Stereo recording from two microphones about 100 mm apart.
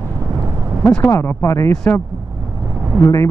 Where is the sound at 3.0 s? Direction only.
30° left (ahead or behind).